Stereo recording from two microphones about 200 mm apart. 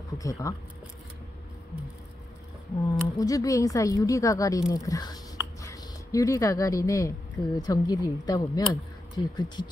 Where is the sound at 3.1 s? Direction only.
15° left (ahead or behind).